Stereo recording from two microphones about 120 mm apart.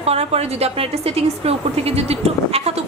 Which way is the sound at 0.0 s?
60° right (ahead or behind).